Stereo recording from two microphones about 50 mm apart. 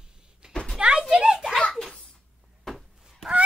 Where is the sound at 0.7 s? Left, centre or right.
Centre.